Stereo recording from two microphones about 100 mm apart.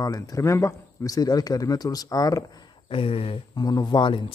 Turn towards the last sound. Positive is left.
turn(degrees=50)  # may be behind; listen again after turning